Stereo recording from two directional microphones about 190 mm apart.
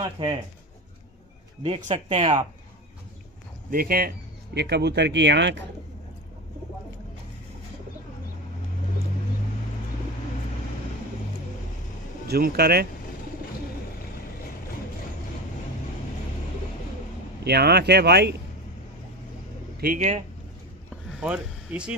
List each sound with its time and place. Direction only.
0.0 s speech: 25° right (ahead or behind)
1.6 s speech: 35° right (ahead or behind)
3.7 s speech: 50° right (ahead or behind)
4.6 s speech: 60° right (ahead or behind)
12.3 s speech: 55° right (ahead or behind)
17.4 s speech: 60° right (ahead or behind)
19.8 s speech: 45° right (ahead or behind)
21.2 s speech: 5° right (ahead or behind)